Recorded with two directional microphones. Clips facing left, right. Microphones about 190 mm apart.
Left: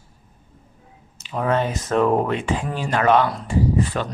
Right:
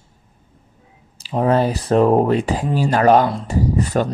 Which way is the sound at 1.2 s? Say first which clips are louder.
Right 5 dB; 35° right (ahead or behind).